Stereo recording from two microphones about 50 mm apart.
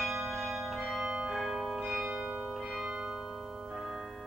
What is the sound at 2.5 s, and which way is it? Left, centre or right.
Church bell, centre.